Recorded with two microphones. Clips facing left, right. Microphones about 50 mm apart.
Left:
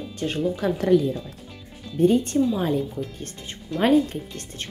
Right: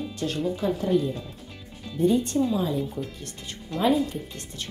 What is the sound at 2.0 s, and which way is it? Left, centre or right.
Speech, left.